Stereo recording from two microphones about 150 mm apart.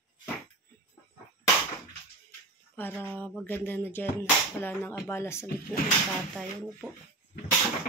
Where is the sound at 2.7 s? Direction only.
15° left (ahead or behind).